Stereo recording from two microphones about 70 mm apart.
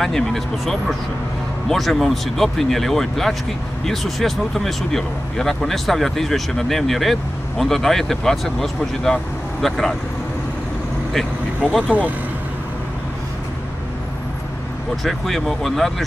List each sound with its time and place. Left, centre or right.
0.0 s speech: centre
11.9 s speech: right
15.0 s speech: centre